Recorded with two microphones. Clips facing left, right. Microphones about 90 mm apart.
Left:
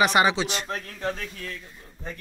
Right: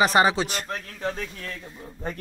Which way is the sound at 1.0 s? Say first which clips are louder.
Right 1 dB; 15° right (ahead or behind).